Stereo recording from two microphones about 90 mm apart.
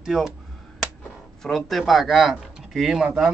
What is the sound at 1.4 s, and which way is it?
Speech, centre (ahead or behind).